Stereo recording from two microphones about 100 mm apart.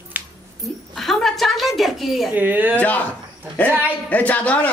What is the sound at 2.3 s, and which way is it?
Speech, 20° right (ahead or behind).